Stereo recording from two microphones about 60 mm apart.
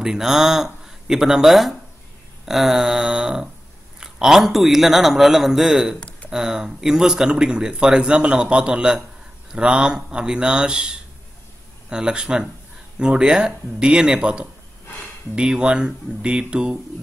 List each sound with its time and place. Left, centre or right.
0.0 s a man's voice: centre
5.9 s a sound: left
6.3 s speech: centre